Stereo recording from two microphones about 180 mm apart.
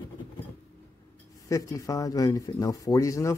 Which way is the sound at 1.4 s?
20° left (ahead or behind).